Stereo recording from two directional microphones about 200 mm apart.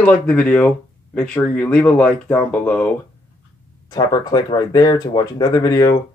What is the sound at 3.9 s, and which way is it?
Speech, 20° left (ahead or behind).